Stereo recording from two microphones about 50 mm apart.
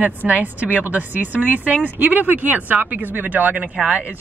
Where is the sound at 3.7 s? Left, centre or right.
Centre.